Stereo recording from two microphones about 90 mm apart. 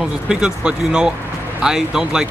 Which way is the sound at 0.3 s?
10° right (ahead or behind).